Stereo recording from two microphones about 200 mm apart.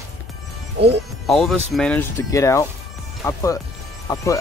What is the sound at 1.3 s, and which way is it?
Speech, centre (ahead or behind).